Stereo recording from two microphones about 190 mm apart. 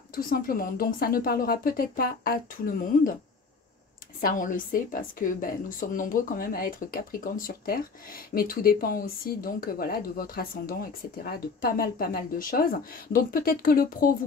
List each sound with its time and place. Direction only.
0.1 s a woman's voice: 50° left (ahead or behind)
4.2 s a woman's voice: 45° left (ahead or behind)